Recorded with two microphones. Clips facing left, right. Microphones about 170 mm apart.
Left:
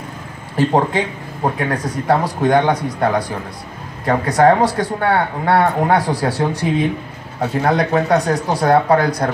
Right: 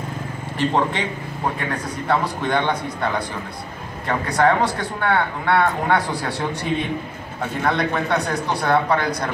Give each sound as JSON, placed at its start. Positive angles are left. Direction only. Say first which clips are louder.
{"t": 0.7, "sound": "speech", "louder": "left 4 dB", "side_deg": 40}
{"t": 7.6, "sound": "speech", "louder": "left 5 dB", "side_deg": 40}